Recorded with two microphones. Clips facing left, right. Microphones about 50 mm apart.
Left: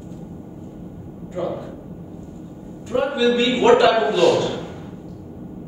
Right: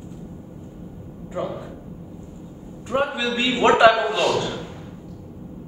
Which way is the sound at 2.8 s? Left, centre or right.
Right.